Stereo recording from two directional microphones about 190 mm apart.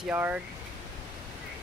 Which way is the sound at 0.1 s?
10° right (ahead or behind).